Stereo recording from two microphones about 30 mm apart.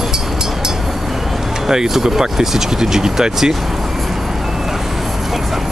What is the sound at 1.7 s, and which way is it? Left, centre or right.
Speech, centre.